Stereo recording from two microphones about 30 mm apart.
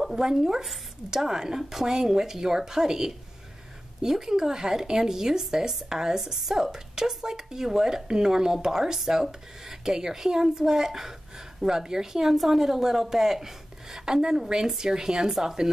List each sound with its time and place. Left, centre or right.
0.1 s speech: centre